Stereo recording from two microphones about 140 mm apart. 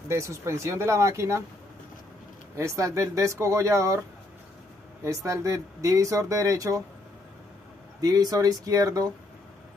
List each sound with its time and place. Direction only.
0.1 s speech: 20° right (ahead or behind)
2.5 s speech: 20° right (ahead or behind)
5.0 s speech: 20° right (ahead or behind)
8.0 s speech: 25° right (ahead or behind)